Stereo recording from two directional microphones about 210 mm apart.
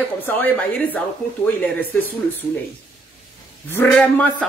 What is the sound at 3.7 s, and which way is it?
Speech, 10° left (ahead or behind).